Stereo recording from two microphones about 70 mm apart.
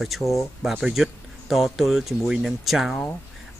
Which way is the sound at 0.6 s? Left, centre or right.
Centre.